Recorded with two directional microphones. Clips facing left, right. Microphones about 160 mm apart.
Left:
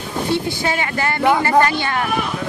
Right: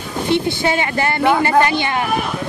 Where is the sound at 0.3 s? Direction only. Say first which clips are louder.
Right 4 dB; 25° right (ahead or behind).